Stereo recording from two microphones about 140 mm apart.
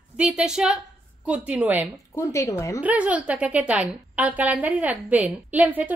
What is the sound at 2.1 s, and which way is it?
Speech, 20° left (ahead or behind).